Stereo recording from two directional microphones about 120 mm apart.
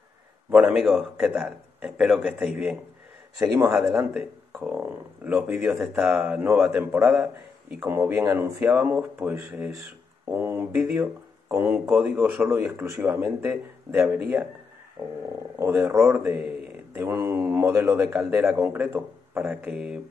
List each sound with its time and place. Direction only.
0.5 s speech: 10° right (ahead or behind)
3.3 s speech: 20° right (ahead or behind)
3.7 s speech: 10° right (ahead or behind)
15.5 s speech: 20° right (ahead or behind)